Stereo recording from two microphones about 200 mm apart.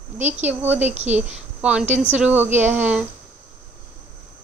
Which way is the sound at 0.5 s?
10° right (ahead or behind).